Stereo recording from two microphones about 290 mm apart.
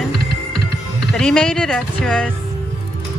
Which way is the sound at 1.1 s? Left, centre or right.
Centre.